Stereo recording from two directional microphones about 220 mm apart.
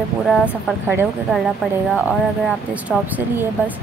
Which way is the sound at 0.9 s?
10° right (ahead or behind).